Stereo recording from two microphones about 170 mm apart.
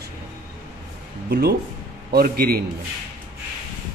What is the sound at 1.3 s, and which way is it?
A man's voice, 70° right (ahead or behind).